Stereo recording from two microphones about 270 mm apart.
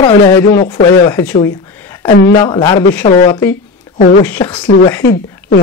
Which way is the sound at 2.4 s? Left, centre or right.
Centre.